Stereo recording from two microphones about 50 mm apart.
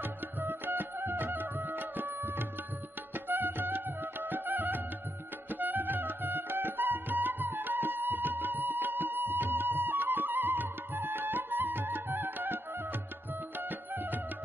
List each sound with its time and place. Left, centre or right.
0.0 s music: right
13.6 s music: right